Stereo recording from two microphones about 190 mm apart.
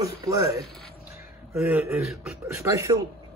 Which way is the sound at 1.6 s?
10° right (ahead or behind).